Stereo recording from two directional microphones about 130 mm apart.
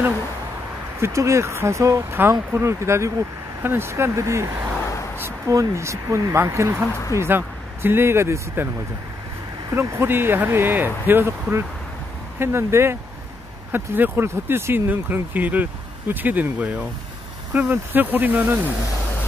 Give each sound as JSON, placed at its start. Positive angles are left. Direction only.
{"t": 1.0, "sound": "speech", "side_deg": -25}
{"t": 9.7, "sound": "speech", "side_deg": -20}
{"t": 12.4, "sound": "speech", "side_deg": -20}